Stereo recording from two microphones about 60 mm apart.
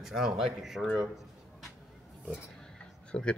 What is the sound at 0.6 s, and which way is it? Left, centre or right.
Speech, centre.